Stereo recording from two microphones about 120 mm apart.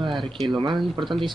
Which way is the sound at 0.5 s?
40° right (ahead or behind).